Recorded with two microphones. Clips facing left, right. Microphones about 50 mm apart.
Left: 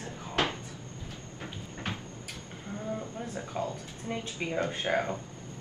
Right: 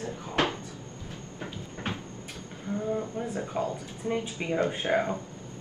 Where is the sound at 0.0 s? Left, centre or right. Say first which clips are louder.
Right 3 dB; right.